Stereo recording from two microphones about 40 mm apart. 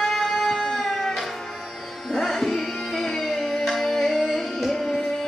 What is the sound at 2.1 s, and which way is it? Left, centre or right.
Tabla, centre.